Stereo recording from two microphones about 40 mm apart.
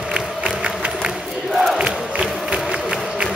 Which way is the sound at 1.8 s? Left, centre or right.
Right.